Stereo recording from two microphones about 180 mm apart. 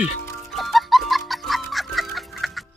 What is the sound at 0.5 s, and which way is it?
Chicken, centre (ahead or behind).